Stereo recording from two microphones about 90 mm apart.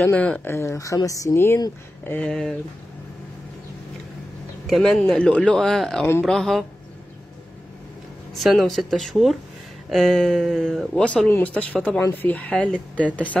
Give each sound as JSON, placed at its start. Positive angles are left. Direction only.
{"t": 0.1, "sound": "speech", "side_deg": 15}
{"t": 0.5, "sound": "speech", "side_deg": 30}
{"t": 2.2, "sound": "speech", "side_deg": 5}
{"t": 4.6, "sound": "speech", "side_deg": 5}
{"t": 8.4, "sound": "speech", "side_deg": 0}
{"t": 11.2, "sound": "speech", "side_deg": 20}